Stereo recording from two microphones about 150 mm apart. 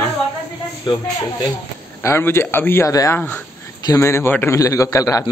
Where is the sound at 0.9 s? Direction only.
30° left (ahead or behind).